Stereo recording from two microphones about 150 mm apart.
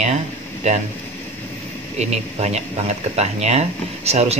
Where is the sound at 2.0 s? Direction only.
45° right (ahead or behind).